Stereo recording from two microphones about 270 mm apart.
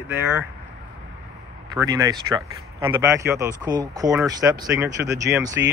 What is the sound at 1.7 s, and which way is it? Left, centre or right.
Speech, centre.